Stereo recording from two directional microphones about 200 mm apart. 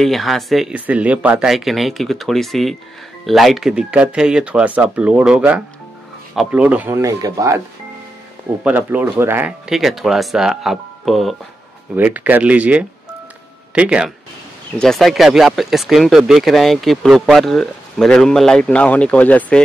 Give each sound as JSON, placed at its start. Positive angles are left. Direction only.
{"t": 0.0, "sound": "speech", "side_deg": 0}
{"t": 8.6, "sound": "speech", "side_deg": -10}